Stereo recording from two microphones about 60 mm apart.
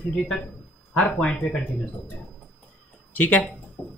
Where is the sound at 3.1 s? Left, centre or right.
Left.